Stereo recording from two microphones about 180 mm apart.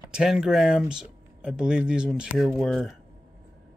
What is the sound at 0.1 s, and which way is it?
Speech, 5° right (ahead or behind).